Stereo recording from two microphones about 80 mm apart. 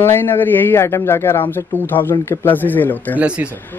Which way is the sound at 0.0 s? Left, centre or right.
Left.